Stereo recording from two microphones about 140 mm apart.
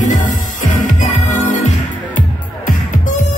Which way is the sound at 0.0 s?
65° left (ahead or behind).